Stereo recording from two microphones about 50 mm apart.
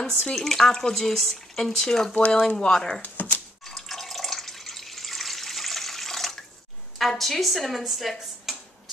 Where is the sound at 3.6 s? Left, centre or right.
Centre.